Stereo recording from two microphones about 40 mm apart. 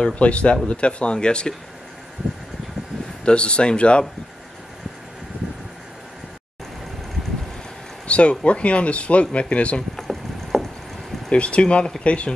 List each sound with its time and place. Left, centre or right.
0.1 s speech: left
3.3 s speech: left
8.1 s speech: left
9.9 s a sound: centre
11.3 s speech: left